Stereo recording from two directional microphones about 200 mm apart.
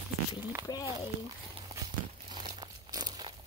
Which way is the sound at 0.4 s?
10° right (ahead or behind).